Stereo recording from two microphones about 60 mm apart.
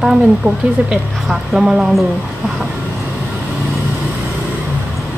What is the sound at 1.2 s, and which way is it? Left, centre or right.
Speech, centre.